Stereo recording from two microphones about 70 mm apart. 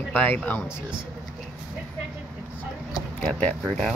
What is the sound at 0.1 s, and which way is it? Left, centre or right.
Speech, left.